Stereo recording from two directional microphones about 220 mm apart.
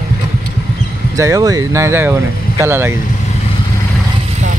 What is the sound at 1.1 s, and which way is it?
Speech, 15° right (ahead or behind).